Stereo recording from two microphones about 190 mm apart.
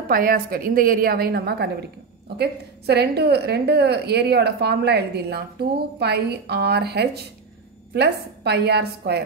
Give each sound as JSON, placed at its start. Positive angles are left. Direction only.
{"t": 0.1, "sound": "a woman's voice", "side_deg": -50}